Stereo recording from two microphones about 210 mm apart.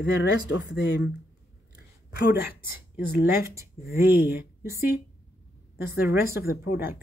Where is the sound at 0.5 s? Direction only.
60° left (ahead or behind).